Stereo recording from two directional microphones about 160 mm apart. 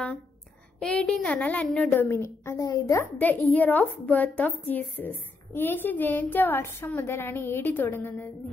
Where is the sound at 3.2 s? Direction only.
10° left (ahead or behind).